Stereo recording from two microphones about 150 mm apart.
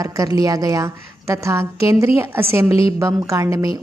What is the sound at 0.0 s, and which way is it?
A woman's voice, 25° right (ahead or behind).